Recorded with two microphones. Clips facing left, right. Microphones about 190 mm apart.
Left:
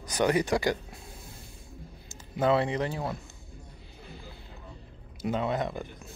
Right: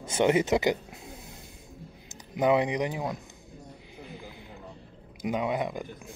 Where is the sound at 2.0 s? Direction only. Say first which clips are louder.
Right 1 dB; 15° right (ahead or behind).